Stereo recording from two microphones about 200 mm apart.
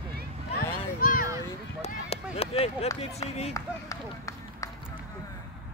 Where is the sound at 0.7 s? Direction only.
45° left (ahead or behind).